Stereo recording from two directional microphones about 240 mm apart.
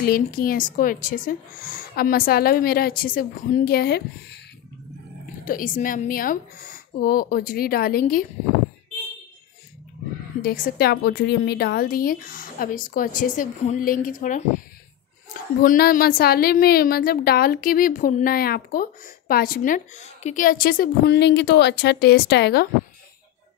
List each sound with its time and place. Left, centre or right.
0.0 s a woman's voice: left
5.4 s a woman's voice: left
10.4 s a woman's voice: left
15.6 s a woman's voice: left